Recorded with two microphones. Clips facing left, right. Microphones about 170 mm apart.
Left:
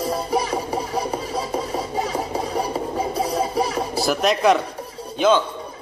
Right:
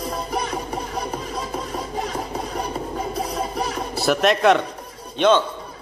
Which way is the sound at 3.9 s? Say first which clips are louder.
Right 1 dB; centre (ahead or behind).